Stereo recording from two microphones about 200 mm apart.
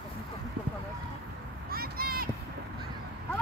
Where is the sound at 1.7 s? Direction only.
50° right (ahead or behind).